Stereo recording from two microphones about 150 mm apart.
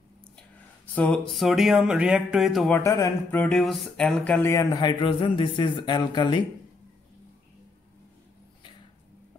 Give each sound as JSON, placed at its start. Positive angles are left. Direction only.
{"t": 0.9, "sound": "speech", "side_deg": 10}
{"t": 2.7, "sound": "speech", "side_deg": 20}